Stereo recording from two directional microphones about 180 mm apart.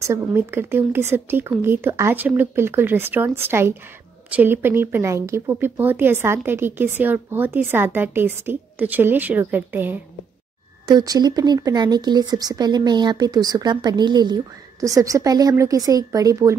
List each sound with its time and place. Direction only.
0.0 s speech: 15° right (ahead or behind)
10.9 s speech: 20° right (ahead or behind)